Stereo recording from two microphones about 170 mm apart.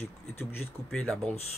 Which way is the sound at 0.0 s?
15° left (ahead or behind).